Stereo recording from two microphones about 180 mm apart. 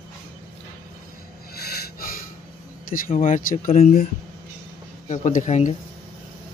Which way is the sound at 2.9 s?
50° left (ahead or behind).